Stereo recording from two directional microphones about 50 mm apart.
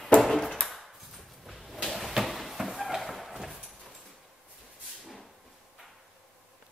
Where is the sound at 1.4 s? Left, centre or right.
Centre.